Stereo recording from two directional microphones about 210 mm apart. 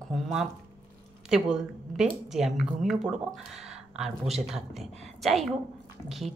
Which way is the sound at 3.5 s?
5° right (ahead or behind).